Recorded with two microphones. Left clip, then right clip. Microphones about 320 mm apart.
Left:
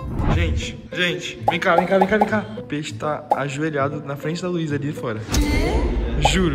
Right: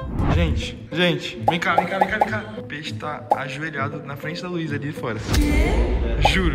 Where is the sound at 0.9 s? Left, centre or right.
Centre.